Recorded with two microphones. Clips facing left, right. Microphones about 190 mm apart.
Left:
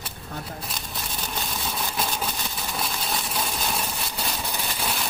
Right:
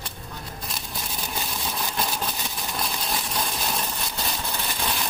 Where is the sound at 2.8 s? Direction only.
5° left (ahead or behind).